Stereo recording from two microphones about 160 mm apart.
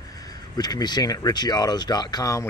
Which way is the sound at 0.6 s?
25° left (ahead or behind).